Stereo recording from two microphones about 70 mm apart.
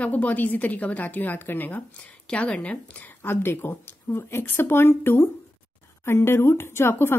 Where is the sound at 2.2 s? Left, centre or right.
Centre.